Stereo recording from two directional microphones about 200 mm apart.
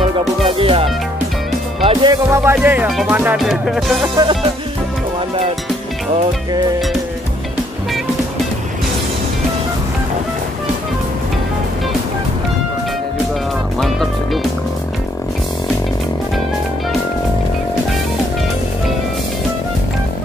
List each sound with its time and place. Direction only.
0.5 s music: 25° right (ahead or behind)
2.3 s music: 10° right (ahead or behind)
4.2 s music: 20° right (ahead or behind)
13.7 s speech: centre (ahead or behind)